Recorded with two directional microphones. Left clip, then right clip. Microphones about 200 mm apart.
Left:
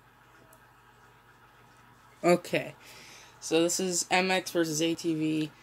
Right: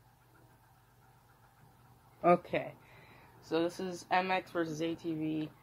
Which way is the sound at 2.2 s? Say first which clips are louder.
Left 3 dB; 40° left (ahead or behind).